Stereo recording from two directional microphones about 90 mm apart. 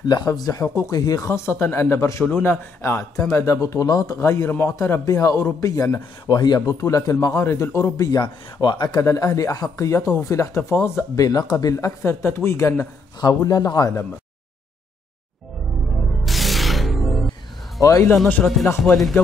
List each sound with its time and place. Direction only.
0.1 s speech: 50° left (ahead or behind); by 2.2 s 30° left (ahead or behind)
2.2 s speech: 20° left (ahead or behind); by 4.2 s 40° left (ahead or behind)
4.2 s a man's voice: 30° left (ahead or behind)
4.7 s speech: 35° left (ahead or behind)
6.2 s speech: 50° left (ahead or behind)
7.3 s a man's voice: 25° left (ahead or behind)
8.1 s speech: 55° left (ahead or behind)
9.0 s speech: 40° left (ahead or behind)
13.2 s speech: 40° left (ahead or behind)
16.3 s music: centre (ahead or behind)
17.7 s speech: 35° left (ahead or behind)
18.4 s speech: 5° left (ahead or behind)